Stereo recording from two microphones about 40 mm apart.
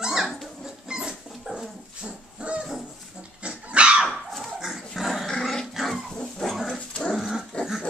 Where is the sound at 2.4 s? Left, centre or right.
Right.